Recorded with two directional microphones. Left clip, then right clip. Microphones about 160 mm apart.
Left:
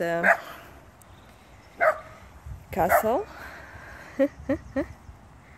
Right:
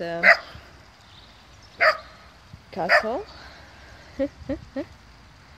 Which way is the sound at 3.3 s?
15° left (ahead or behind).